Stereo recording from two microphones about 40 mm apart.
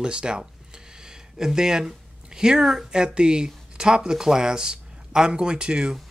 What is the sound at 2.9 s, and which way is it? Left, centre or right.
Speech, right.